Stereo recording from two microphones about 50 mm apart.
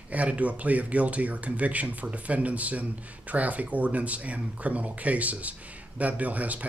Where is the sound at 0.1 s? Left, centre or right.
Right.